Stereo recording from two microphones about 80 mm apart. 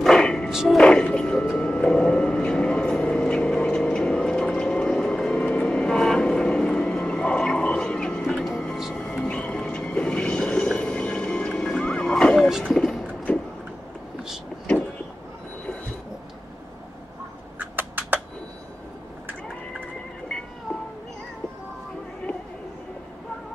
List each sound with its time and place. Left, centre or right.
0.0 s a sound: centre
0.5 s speech: centre
0.7 s music: centre
1.6 s vehicle: centre
8.9 s music: centre
12.6 s boat: centre
17.6 s a sound: right